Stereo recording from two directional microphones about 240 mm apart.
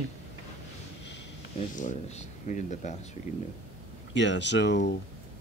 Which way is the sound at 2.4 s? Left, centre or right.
Left.